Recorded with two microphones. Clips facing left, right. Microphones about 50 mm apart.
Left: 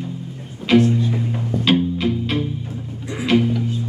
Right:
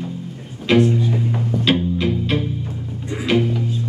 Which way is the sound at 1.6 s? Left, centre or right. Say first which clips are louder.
Left 1 dB; centre.